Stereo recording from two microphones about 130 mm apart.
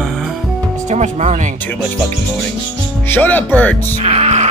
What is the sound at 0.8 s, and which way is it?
Speech, 65° right (ahead or behind).